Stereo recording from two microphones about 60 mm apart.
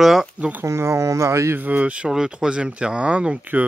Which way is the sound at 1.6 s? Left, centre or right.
Right.